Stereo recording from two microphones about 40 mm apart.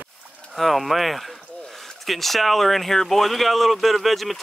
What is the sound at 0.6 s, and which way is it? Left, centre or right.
Speech, centre.